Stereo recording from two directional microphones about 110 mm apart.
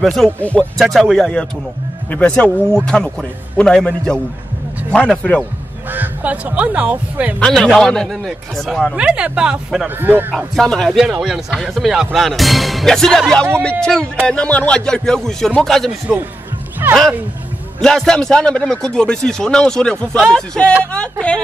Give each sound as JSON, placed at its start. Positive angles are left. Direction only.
{"t": 0.0, "sound": "a man's voice", "side_deg": 0}
{"t": 0.4, "sound": "a man's voice", "side_deg": 10}
{"t": 0.7, "sound": "a man's voice", "side_deg": 0}
{"t": 5.9, "sound": "speech", "side_deg": -15}
{"t": 7.3, "sound": "a man's voice", "side_deg": 5}
{"t": 8.9, "sound": "speech", "side_deg": -10}
{"t": 9.9, "sound": "speech", "side_deg": -15}
{"t": 10.3, "sound": "a man's voice", "side_deg": 5}
{"t": 16.1, "sound": "speech", "side_deg": -15}
{"t": 17.7, "sound": "a man's voice", "side_deg": 5}